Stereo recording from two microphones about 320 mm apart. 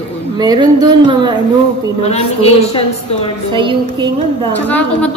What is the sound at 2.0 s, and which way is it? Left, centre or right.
Speech, centre.